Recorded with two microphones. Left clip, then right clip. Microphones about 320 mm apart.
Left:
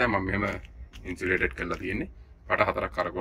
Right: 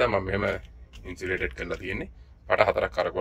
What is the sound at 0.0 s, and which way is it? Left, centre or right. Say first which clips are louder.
A man's voice: right 2 dB; centre.